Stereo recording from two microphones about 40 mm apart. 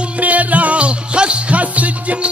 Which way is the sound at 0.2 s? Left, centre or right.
Right.